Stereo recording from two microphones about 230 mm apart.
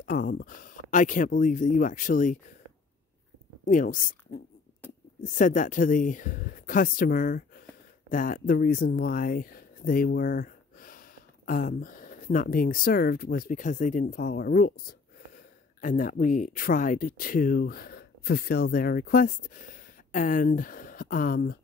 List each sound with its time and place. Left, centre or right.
0.0 s speech: left
3.6 s speech: left